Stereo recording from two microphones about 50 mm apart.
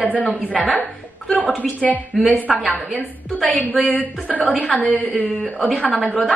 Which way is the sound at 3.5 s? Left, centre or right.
Left.